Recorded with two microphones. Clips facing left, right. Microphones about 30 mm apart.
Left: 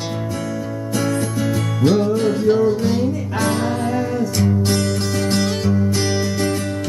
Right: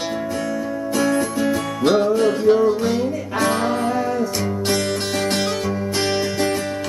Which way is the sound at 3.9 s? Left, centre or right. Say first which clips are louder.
Even; right.